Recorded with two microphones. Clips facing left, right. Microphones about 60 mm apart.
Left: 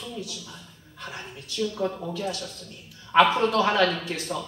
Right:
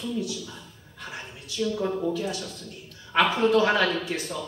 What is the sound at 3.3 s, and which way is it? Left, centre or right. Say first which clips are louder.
Speech: right 1 dB; centre.